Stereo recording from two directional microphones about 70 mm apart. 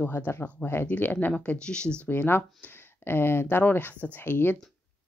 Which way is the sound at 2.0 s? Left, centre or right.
Left.